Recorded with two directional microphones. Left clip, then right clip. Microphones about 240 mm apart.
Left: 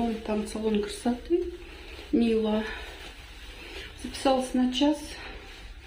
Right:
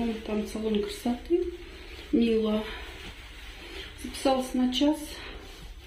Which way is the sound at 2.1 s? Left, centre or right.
Centre.